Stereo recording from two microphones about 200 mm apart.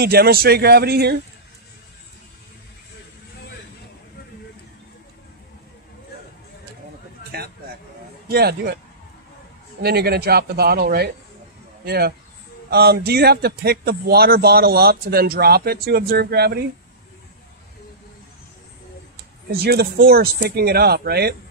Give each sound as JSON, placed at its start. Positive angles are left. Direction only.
{"t": 0.0, "sound": "a man's voice", "side_deg": -50}
{"t": 7.3, "sound": "a sound", "side_deg": -50}
{"t": 8.3, "sound": "a man's voice", "side_deg": -50}
{"t": 9.8, "sound": "a man's voice", "side_deg": -55}
{"t": 19.5, "sound": "a man's voice", "side_deg": -50}